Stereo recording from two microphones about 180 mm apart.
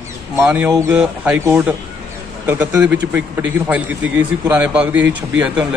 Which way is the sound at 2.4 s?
10° right (ahead or behind).